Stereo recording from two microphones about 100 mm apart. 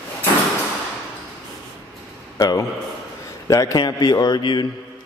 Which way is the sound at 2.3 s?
40° left (ahead or behind).